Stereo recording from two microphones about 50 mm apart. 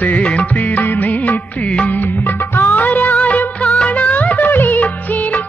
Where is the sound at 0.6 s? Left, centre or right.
Left.